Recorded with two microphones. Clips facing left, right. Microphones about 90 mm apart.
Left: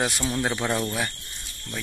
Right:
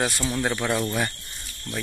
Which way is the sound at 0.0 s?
15° left (ahead or behind).